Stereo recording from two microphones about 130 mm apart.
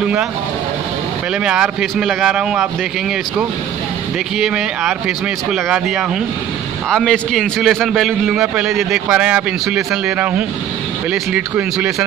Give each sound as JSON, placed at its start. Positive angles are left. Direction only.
{"t": 0.0, "sound": "speech", "side_deg": -10}
{"t": 1.4, "sound": "a man's voice", "side_deg": -5}
{"t": 4.4, "sound": "a man's voice", "side_deg": -5}